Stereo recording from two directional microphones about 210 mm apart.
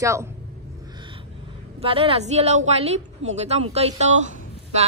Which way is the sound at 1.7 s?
25° right (ahead or behind).